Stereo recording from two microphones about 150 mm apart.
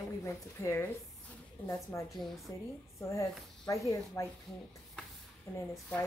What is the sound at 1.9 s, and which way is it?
Speech, 25° left (ahead or behind).